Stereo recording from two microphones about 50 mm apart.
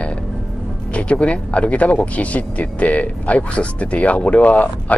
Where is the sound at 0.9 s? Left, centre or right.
Left.